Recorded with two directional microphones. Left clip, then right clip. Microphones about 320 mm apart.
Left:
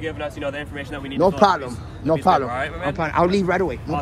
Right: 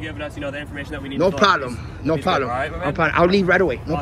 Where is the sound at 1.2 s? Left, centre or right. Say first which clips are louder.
Even; centre.